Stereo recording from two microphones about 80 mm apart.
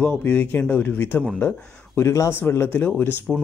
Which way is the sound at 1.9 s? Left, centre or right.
Left.